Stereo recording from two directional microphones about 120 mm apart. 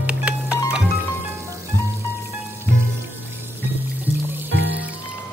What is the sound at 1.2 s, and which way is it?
Music, 25° right (ahead or behind).